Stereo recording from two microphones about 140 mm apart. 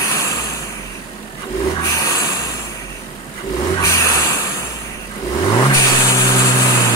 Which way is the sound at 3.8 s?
25° left (ahead or behind).